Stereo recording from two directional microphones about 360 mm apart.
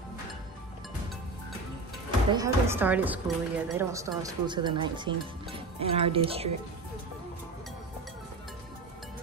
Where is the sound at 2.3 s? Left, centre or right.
Centre.